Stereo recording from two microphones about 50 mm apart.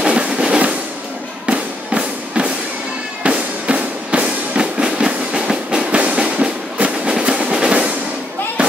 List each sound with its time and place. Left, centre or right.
0.0 s drum: right
1.4 s music: right